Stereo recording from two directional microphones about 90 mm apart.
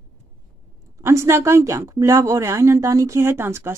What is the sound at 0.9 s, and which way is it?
A woman's voice, 30° right (ahead or behind).